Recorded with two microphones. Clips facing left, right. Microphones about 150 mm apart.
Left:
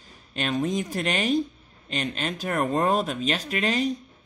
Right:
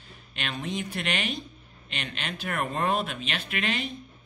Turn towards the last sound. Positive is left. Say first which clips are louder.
# left 6 dB
turn(degrees=40)  # may be behind; listen again after turning